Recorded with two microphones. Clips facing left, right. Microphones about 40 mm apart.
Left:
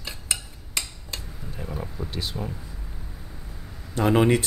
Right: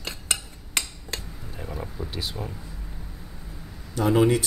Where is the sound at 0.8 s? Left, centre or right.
Right.